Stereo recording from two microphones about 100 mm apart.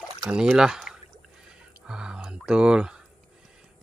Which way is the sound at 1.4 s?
10° right (ahead or behind).